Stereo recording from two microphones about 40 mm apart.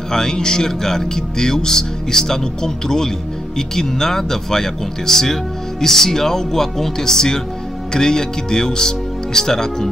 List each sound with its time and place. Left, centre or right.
0.1 s speech: centre